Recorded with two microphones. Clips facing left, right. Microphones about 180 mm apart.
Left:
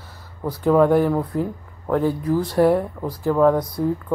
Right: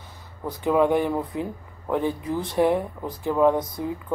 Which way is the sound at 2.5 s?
15° right (ahead or behind).